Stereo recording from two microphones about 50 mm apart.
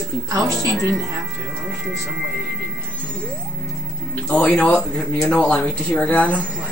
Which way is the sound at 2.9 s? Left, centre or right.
Left.